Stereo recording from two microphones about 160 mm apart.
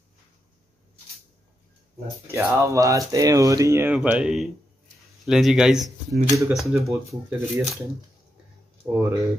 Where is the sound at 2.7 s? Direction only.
20° right (ahead or behind); by 6.9 s centre (ahead or behind).